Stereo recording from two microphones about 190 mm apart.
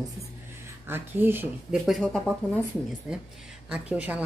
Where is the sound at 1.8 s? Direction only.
Centre (ahead or behind).